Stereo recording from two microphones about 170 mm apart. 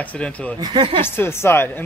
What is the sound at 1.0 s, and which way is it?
Speech, 15° left (ahead or behind).